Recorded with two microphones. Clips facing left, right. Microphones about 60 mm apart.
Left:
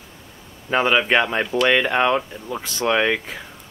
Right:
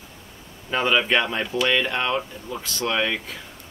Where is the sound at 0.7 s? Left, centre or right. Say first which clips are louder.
Left 3 dB; left.